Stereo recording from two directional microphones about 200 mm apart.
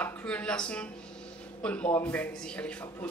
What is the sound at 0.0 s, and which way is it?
Speech, 5° left (ahead or behind).